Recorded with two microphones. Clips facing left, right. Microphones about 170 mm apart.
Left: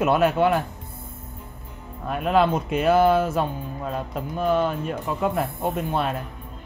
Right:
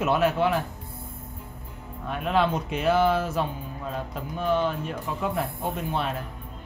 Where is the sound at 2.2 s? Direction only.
55° left (ahead or behind).